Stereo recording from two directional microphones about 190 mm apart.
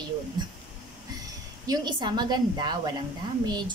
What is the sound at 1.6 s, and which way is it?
A woman's voice, 20° right (ahead or behind).